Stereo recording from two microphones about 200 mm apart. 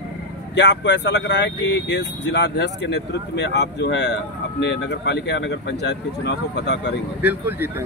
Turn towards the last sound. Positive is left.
turn(degrees=-10)  # may be behind; listen again after turning